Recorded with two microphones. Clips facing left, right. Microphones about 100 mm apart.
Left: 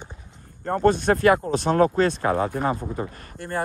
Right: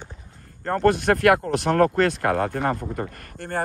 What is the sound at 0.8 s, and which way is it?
Speech, 85° right.